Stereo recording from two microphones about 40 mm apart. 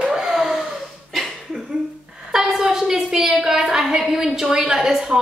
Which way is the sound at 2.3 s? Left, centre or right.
Centre.